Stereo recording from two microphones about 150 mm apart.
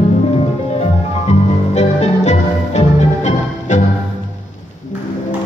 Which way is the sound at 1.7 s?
50° left (ahead or behind).